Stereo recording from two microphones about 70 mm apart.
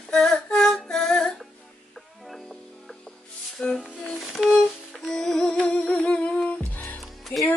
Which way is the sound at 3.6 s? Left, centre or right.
Left.